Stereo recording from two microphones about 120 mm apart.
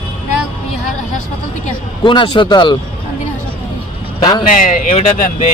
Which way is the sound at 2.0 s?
45° left (ahead or behind).